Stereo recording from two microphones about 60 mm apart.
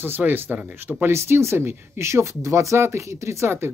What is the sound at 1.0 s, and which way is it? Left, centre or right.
Speech, right.